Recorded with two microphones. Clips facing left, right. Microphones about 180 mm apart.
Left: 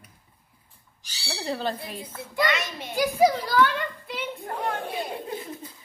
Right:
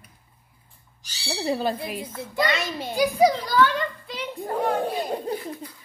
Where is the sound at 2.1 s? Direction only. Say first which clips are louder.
Even; 30° right (ahead or behind).